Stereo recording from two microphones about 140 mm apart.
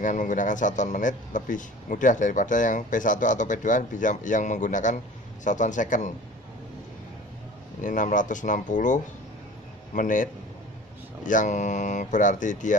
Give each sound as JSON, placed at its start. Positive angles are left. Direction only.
{"t": 0.0, "sound": "speech", "side_deg": 65}
{"t": 7.8, "sound": "speech", "side_deg": 70}